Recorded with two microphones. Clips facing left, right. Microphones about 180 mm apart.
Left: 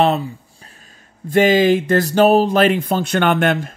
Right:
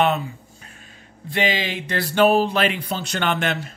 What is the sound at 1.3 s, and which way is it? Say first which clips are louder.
Speech: left 11 dB; 45° left (ahead or behind).